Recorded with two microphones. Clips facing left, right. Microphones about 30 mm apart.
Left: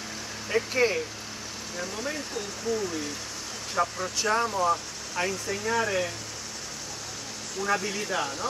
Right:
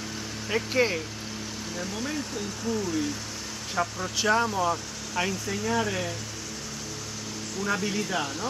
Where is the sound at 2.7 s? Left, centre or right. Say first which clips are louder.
Right 2 dB; left.